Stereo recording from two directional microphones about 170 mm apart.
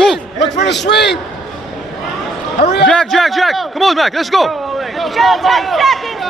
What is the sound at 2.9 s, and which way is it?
Speech, 5° left (ahead or behind).